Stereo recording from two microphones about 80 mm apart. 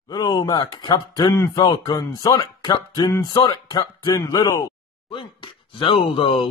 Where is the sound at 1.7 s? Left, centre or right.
Left.